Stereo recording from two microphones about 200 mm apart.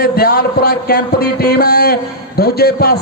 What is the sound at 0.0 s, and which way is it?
A man's voice, 50° left (ahead or behind).